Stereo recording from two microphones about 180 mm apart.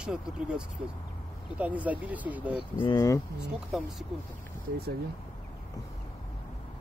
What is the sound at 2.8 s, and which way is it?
Speech, 20° left (ahead or behind).